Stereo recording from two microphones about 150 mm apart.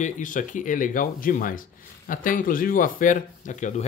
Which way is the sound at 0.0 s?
60° left (ahead or behind).